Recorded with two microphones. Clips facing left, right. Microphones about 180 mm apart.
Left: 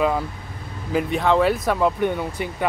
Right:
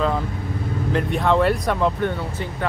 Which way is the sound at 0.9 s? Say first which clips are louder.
Left 1 dB; centre (ahead or behind).